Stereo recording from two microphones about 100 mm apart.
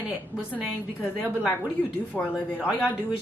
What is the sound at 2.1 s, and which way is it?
Speech, 20° left (ahead or behind).